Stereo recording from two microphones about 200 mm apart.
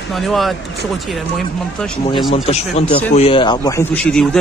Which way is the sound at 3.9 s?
5° left (ahead or behind).